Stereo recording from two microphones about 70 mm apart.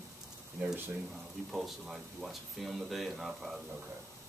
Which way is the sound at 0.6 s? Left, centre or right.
Right.